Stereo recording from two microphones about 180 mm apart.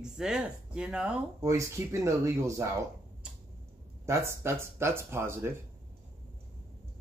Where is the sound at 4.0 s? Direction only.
15° right (ahead or behind).